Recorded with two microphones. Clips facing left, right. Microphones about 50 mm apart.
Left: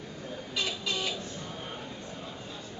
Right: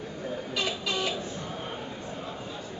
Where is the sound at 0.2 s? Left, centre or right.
Right.